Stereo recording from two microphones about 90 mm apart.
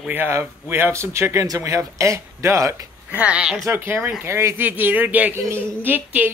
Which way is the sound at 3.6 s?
25° right (ahead or behind).